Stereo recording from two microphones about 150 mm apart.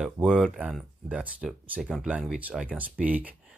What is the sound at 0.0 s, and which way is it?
Speech, centre (ahead or behind).